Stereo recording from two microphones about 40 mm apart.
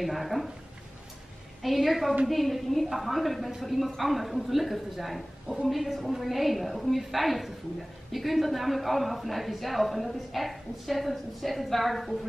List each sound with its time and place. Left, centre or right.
0.0 s speech: centre
1.6 s speech: centre